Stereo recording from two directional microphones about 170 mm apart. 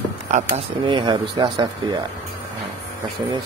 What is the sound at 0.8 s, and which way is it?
Speech, 25° right (ahead or behind).